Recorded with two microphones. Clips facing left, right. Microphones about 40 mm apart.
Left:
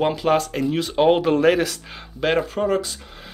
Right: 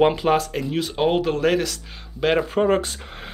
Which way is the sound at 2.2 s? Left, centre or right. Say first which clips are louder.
Even; centre.